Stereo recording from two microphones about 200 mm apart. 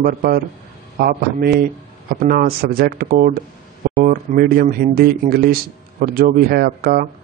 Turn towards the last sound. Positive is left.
turn(degrees=-45)  # may be behind; listen again after turning